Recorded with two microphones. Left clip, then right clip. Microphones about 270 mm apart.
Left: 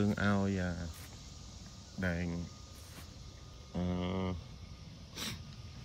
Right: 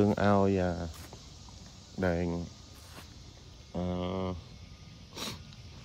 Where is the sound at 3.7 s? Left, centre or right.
Centre.